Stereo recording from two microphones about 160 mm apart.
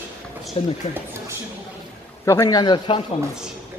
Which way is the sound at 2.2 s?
20° left (ahead or behind).